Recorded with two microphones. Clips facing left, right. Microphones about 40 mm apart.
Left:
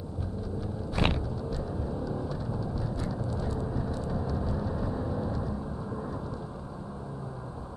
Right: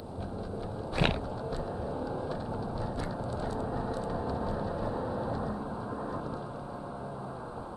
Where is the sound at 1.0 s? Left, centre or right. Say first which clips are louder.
Even; centre.